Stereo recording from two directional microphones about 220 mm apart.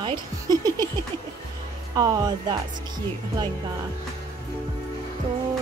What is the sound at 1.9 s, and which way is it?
Speech, 15° right (ahead or behind).